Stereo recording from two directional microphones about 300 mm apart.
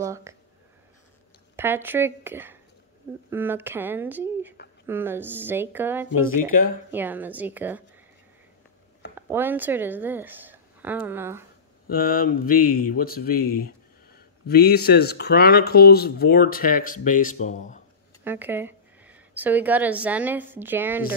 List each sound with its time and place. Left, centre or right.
0.0 s speech: centre
1.6 s speech: centre
6.4 s speech: left
6.9 s a woman's voice: centre
9.1 s speech: centre
11.9 s speech: left
18.2 s speech: centre